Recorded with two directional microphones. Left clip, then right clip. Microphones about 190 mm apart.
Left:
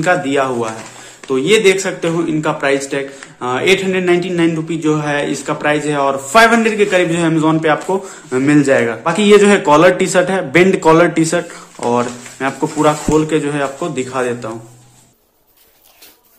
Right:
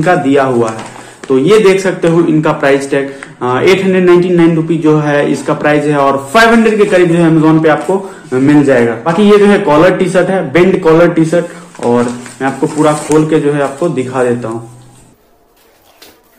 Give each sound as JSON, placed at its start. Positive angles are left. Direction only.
{"t": 0.0, "sound": "a man's voice", "side_deg": 20}